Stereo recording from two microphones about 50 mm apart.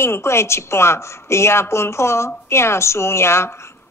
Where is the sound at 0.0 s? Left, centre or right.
Left.